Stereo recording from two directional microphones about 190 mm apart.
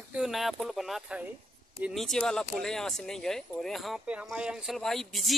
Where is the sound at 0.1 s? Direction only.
Centre (ahead or behind).